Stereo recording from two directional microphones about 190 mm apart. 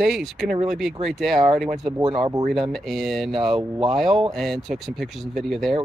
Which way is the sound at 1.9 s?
20° right (ahead or behind).